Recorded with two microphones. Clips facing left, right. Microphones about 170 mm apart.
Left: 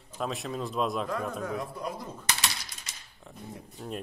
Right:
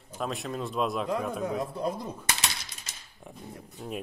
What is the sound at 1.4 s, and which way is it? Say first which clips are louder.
Speech: right 4 dB; 25° right (ahead or behind).